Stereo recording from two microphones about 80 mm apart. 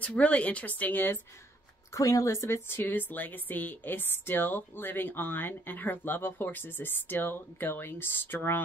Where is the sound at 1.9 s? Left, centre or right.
Left.